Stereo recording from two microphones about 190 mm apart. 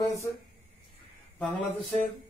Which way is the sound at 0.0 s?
15° left (ahead or behind).